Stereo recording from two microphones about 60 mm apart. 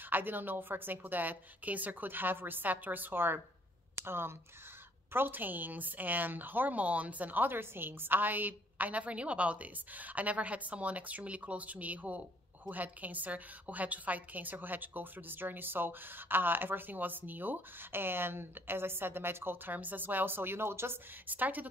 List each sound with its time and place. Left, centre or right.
0.1 s a woman's voice: right
21.3 s a woman's voice: right